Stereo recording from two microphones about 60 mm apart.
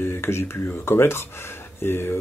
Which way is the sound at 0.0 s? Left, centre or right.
Left.